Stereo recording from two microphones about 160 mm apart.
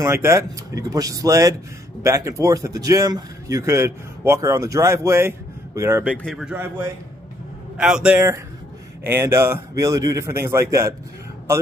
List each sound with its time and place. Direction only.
0.0 s speech: 15° right (ahead or behind)
6.2 s a man's voice: 5° right (ahead or behind)